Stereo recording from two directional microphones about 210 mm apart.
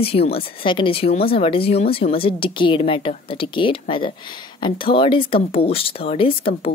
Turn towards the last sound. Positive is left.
turn(degrees=25)  # may be behind; listen again after turning